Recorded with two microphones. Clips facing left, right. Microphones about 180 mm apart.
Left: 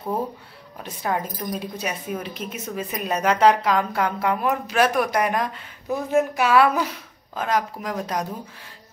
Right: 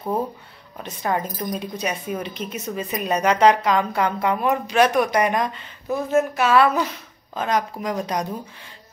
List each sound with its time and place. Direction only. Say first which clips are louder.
0.8 s speech: right 2 dB; 5° left (ahead or behind)